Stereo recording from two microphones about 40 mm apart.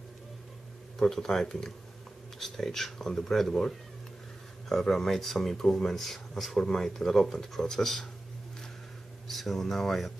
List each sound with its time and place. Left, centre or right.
0.9 s speech: centre
9.3 s speech: centre